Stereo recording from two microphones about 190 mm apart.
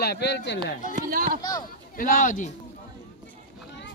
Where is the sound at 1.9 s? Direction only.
45° left (ahead or behind).